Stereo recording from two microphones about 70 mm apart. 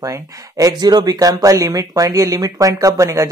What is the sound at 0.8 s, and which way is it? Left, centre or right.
Speech, right.